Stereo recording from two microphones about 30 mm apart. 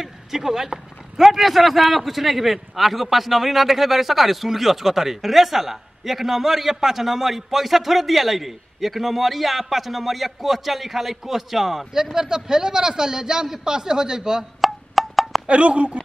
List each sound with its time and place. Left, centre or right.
0.0 s a man's voice: centre
14.6 s wood block: centre
15.4 s speech: right